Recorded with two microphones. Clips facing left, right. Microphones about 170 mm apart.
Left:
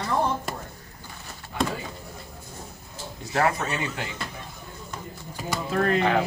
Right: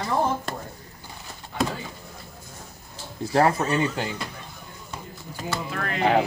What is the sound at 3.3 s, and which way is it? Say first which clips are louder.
Speech: right 4 dB; 30° right (ahead or behind).